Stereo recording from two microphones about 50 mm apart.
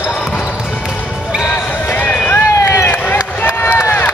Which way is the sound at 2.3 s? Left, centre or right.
Left.